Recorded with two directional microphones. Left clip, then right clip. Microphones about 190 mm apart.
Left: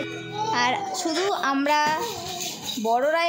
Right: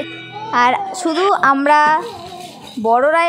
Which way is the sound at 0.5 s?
25° right (ahead or behind).